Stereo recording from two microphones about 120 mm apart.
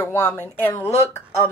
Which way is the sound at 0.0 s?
20° left (ahead or behind).